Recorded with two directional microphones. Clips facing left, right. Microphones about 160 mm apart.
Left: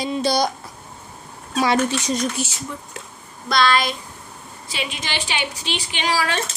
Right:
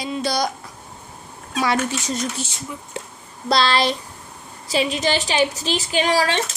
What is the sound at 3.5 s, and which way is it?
A woman's voice, 30° right (ahead or behind).